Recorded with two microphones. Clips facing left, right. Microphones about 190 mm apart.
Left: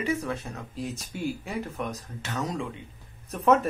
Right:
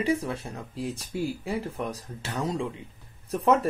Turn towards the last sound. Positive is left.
turn(degrees=-30)  # may be behind; listen again after turning